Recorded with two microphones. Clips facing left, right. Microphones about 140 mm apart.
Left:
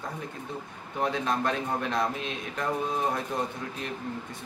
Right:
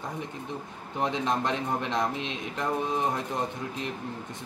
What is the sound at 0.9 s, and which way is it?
A man's voice, 20° right (ahead or behind).